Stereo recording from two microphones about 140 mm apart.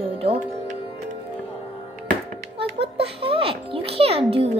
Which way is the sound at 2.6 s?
40° right (ahead or behind).